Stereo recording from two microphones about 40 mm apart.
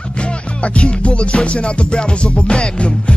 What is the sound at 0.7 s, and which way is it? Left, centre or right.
Music, left.